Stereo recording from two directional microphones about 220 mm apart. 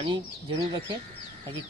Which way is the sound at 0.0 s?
20° right (ahead or behind).